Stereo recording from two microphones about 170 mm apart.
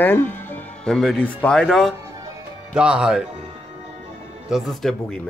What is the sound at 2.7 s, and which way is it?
Speech, 5° right (ahead or behind).